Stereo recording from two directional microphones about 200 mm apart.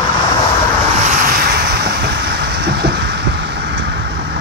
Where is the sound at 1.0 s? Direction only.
40° right (ahead or behind).